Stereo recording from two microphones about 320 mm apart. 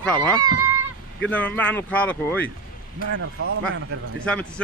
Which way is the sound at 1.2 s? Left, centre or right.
Centre.